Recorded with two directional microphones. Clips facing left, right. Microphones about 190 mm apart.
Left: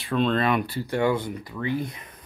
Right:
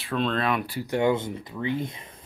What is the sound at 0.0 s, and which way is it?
Speech, centre (ahead or behind).